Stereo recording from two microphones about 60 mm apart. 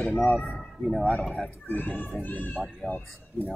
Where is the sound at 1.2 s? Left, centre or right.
Centre.